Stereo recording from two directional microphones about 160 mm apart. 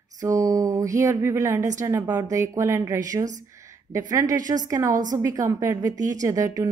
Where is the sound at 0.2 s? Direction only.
20° right (ahead or behind).